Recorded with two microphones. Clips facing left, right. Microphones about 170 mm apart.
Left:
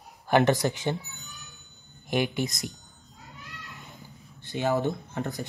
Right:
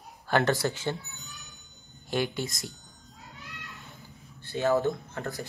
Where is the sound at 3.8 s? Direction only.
20° left (ahead or behind).